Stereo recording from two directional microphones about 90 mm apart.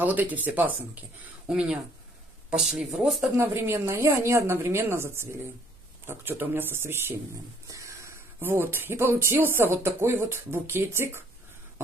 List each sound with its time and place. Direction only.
0.0 s speech: 20° right (ahead or behind)
1.5 s speech: 5° right (ahead or behind)
3.3 s speech: 25° right (ahead or behind)